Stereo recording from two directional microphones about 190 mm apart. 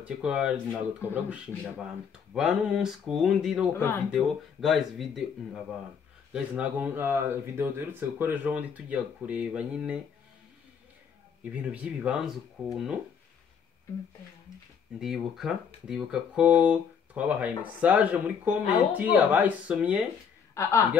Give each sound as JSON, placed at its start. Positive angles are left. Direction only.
{"t": 0.0, "sound": "speech", "side_deg": -5}
{"t": 3.7, "sound": "speech", "side_deg": 10}
{"t": 4.1, "sound": "speech", "side_deg": 0}
{"t": 11.4, "sound": "speech", "side_deg": -5}
{"t": 15.0, "sound": "speech", "side_deg": 0}
{"t": 20.5, "sound": "a woman's voice", "side_deg": 15}